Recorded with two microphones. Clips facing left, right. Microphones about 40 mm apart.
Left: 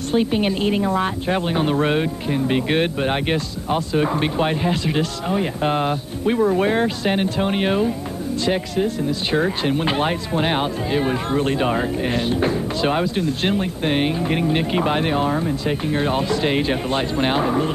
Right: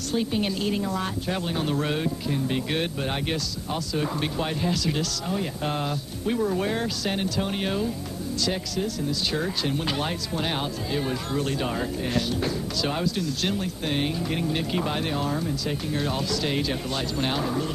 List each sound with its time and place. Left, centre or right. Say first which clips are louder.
0.1 s a woman's voice: left 7 dB; left